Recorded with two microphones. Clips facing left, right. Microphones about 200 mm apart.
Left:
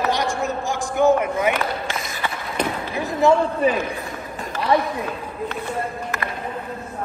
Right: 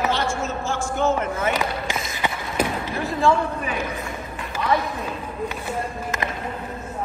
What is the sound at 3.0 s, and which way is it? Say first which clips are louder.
Speech: left 4 dB; 20° left (ahead or behind).